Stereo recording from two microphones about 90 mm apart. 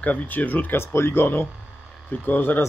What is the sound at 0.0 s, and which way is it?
Speech, 15° left (ahead or behind).